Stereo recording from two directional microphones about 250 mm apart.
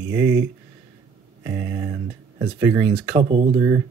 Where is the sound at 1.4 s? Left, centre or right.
Centre.